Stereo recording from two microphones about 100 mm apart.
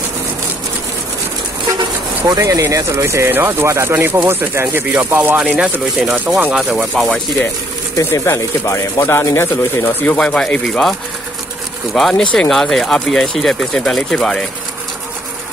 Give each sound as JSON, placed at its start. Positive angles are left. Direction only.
{"t": 2.2, "sound": "speech", "side_deg": -35}
{"t": 7.0, "sound": "speech", "side_deg": 5}
{"t": 8.0, "sound": "speech", "side_deg": 25}
{"t": 10.1, "sound": "speech", "side_deg": 10}
{"t": 12.0, "sound": "speech", "side_deg": 5}